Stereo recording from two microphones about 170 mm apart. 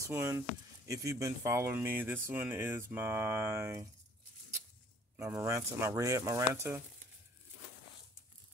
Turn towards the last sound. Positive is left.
turn(degrees=-15)  # may be behind; listen again after turning